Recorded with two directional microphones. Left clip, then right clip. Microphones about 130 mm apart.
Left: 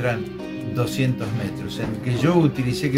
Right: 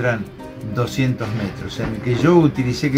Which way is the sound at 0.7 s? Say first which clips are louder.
Right 3 dB; 20° left (ahead or behind).